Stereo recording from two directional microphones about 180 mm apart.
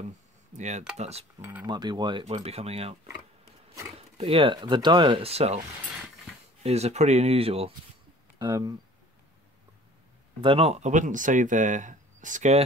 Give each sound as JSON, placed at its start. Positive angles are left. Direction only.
{"t": 0.6, "sound": "speech", "side_deg": -40}
{"t": 1.4, "sound": "speech", "side_deg": -10}
{"t": 1.7, "sound": "speech", "side_deg": -25}
{"t": 2.2, "sound": "speech", "side_deg": -35}
{"t": 4.2, "sound": "speech", "side_deg": -30}
{"t": 6.6, "sound": "speech", "side_deg": -35}
{"t": 8.4, "sound": "speech", "side_deg": -20}
{"t": 10.4, "sound": "speech", "side_deg": -30}